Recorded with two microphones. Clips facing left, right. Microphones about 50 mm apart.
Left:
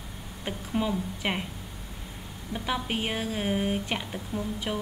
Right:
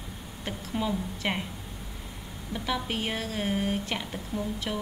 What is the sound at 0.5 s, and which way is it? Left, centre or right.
Speech, centre.